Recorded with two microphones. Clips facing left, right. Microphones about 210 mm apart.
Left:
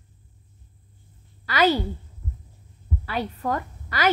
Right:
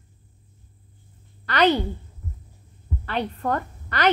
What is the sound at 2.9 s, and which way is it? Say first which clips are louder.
A woman's voice: right 1 dB; 5° left (ahead or behind).